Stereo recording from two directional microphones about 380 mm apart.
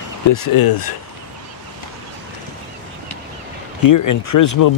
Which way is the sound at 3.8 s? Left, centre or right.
Left.